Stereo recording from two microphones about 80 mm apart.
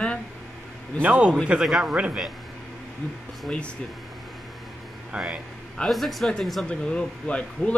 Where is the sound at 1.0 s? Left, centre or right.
Centre.